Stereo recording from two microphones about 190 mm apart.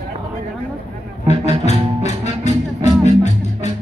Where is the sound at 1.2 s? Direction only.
35° left (ahead or behind).